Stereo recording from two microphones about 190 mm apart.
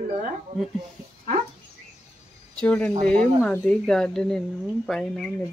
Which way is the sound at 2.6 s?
5° left (ahead or behind).